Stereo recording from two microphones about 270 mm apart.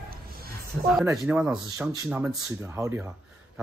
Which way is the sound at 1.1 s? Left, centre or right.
Centre.